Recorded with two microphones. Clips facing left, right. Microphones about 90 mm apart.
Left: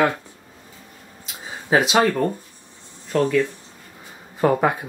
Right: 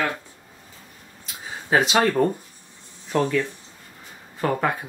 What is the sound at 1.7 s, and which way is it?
Speech, 10° left (ahead or behind).